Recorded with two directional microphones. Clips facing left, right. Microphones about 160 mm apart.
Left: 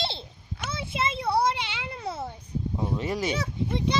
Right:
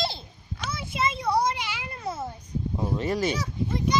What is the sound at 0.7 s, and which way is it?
Children playing, 25° left (ahead or behind).